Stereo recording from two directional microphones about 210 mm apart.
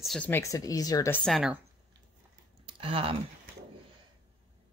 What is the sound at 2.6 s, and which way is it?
Speech, 25° right (ahead or behind).